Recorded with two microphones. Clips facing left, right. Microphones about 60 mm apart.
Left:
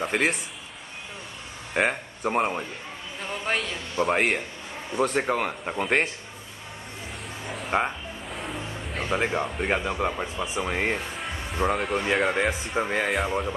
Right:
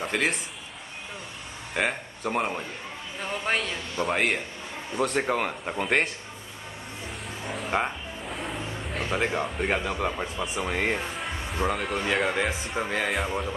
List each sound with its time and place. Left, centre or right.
0.1 s speech: centre
1.7 s speech: centre
3.2 s speech: centre
7.4 s music: centre
9.0 s speech: centre